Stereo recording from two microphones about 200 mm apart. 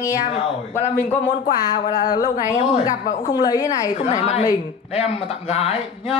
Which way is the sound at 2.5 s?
15° left (ahead or behind).